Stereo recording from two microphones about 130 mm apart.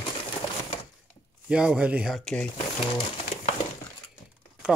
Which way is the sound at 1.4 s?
5° right (ahead or behind).